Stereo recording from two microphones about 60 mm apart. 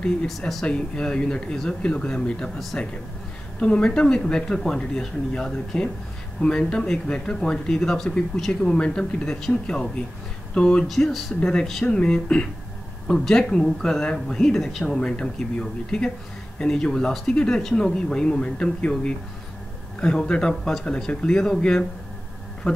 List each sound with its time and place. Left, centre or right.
0.7 s speech: centre
10.9 s speech: centre